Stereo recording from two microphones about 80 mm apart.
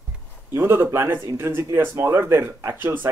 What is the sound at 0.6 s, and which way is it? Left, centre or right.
Speech, right.